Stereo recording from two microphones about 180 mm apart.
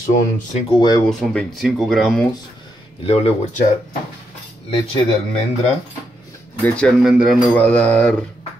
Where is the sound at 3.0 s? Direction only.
30° left (ahead or behind).